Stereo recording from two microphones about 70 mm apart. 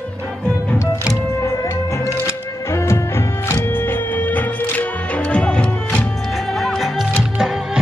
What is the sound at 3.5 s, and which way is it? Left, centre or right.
Music, left.